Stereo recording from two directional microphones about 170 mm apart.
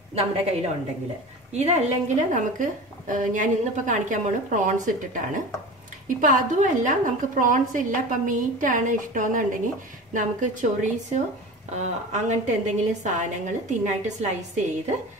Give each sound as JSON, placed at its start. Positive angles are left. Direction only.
{"t": 0.1, "sound": "a woman's voice", "side_deg": -35}